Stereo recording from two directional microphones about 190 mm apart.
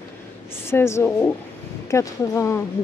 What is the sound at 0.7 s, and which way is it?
A woman's voice, 15° left (ahead or behind).